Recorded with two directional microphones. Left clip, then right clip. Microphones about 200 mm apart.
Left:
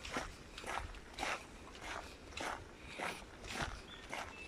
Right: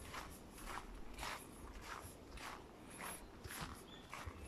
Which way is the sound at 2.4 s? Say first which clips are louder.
Left 9 dB; 55° left (ahead or behind).